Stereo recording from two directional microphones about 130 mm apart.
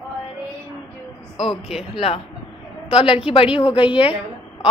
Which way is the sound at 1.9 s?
50° left (ahead or behind).